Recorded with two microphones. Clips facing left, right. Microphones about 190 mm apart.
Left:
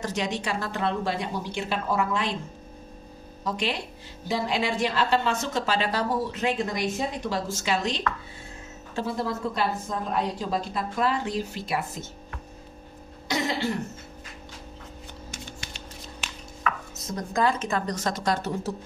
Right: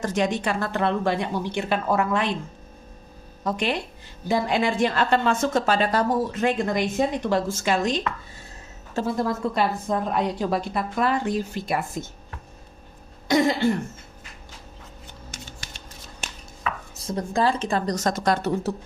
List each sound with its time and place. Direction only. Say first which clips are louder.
0.0 s a woman's voice: right 5 dB; 50° right (ahead or behind)
3.4 s a woman's voice: right 4 dB; 55° right (ahead or behind)
13.3 s a woman's voice: right 8 dB; 55° right (ahead or behind)
16.6 s speech: right 1 dB; 30° right (ahead or behind); by 18.5 s 55° right (ahead or behind)